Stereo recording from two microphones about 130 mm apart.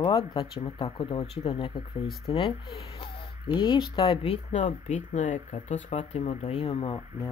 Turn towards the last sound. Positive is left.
turn(degrees=40)  # may be behind; listen again after turning